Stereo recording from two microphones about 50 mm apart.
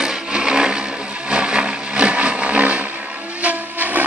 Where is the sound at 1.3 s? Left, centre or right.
Centre.